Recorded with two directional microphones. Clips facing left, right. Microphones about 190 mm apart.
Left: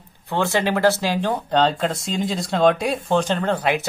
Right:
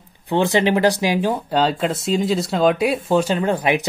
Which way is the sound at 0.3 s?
15° right (ahead or behind).